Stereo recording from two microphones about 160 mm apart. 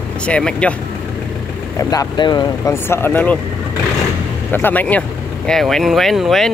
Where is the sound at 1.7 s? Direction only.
20° left (ahead or behind).